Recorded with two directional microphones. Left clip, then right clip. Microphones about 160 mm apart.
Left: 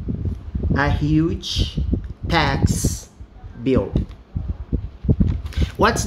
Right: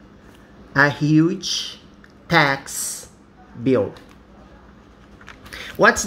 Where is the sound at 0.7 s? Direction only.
20° right (ahead or behind).